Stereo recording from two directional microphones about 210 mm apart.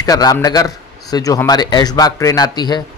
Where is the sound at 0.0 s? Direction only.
15° left (ahead or behind).